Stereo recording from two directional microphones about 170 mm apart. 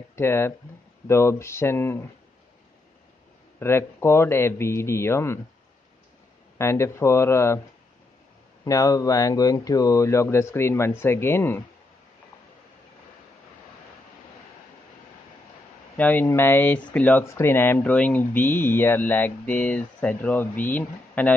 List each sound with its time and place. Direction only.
0.1 s speech: 15° left (ahead or behind)
3.5 s speech: 15° left (ahead or behind)
6.6 s speech: 15° left (ahead or behind)
8.6 s speech: 20° left (ahead or behind)
16.0 s speech: 10° left (ahead or behind)